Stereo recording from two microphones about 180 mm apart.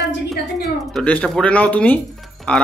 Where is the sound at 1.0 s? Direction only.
5° left (ahead or behind).